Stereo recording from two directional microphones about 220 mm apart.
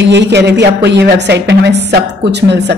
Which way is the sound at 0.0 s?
50° right (ahead or behind).